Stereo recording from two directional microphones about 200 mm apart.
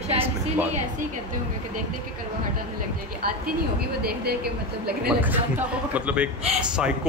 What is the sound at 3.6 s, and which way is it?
Speech, 50° right (ahead or behind).